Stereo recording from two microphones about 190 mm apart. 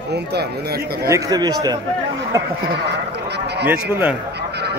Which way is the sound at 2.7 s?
65° right (ahead or behind).